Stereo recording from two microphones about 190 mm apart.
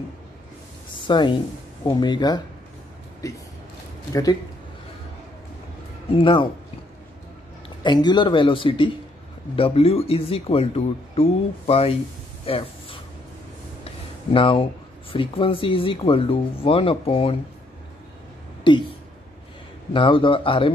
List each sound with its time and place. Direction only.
1.0 s speech: 25° left (ahead or behind)
6.1 s speech: 25° left (ahead or behind)
7.8 s speech: 25° left (ahead or behind)
12.4 s a sound: 30° left (ahead or behind)
14.3 s speech: 25° left (ahead or behind)
18.7 s speech: 25° left (ahead or behind)
19.9 s speech: 25° left (ahead or behind)